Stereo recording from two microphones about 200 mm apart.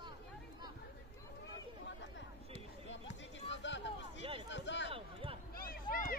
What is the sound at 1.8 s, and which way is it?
Chatter, 65° left (ahead or behind).